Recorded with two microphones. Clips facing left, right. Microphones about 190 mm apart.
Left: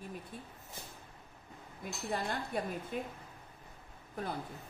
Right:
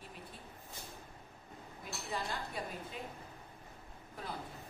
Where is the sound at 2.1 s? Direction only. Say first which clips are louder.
Left 4 dB; 55° left (ahead or behind).